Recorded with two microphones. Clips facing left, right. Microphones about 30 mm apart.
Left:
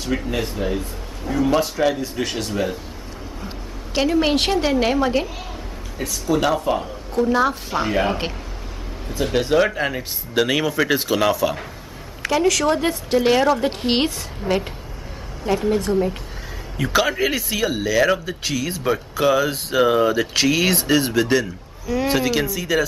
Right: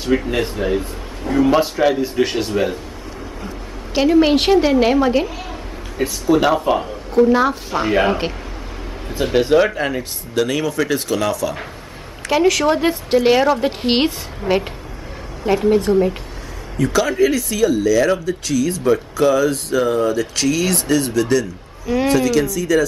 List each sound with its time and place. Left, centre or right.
0.0 s a man's voice: centre
3.9 s a man's voice: centre
5.9 s speech: centre
7.2 s a man's voice: centre
10.3 s speech: centre
12.3 s a man's voice: centre
16.7 s speech: left